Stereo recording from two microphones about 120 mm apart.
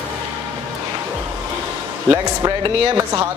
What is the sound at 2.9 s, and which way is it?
Speech, 30° right (ahead or behind).